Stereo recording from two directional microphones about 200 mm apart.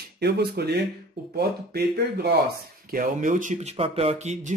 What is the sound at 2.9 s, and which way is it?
Speech, 40° right (ahead or behind).